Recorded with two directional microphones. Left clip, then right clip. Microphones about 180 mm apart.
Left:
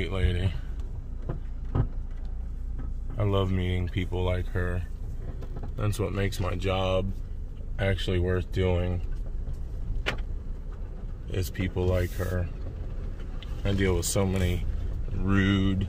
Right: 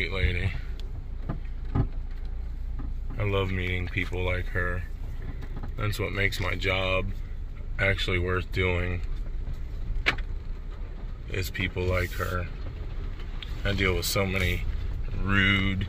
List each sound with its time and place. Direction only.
0.0 s a sound: 30° left (ahead or behind)
3.2 s speech: 30° left (ahead or behind)
11.3 s speech: 25° left (ahead or behind)
13.6 s speech: 25° left (ahead or behind)